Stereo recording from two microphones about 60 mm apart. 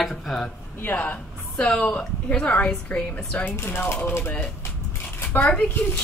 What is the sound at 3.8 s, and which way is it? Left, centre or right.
Speech, left.